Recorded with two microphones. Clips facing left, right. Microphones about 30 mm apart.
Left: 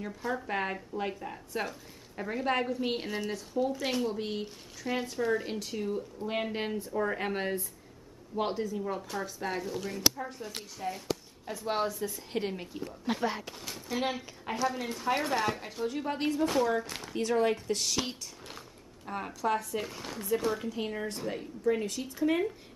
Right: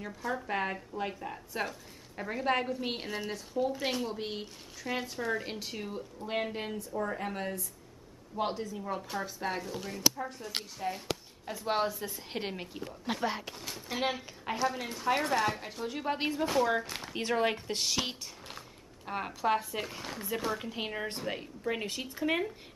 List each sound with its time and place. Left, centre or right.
0.3 s a woman's voice: centre
6.2 s a woman's voice: centre
6.8 s speech: left
8.4 s a woman's voice: centre
13.0 s a woman's voice: centre
17.1 s a woman's voice: right
20.7 s speech: right